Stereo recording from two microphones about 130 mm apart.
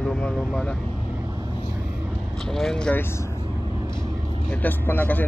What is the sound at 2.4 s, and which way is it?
Speech, 5° left (ahead or behind).